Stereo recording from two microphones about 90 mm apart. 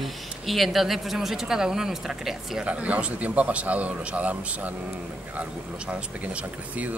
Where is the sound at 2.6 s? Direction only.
15° right (ahead or behind).